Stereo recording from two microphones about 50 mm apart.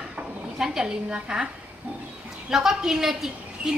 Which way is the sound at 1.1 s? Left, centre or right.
Right.